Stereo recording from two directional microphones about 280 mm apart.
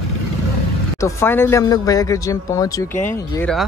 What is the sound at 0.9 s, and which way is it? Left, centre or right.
Speech, centre.